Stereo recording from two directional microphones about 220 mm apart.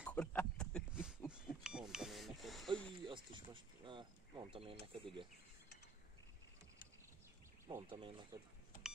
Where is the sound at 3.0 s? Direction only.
20° right (ahead or behind).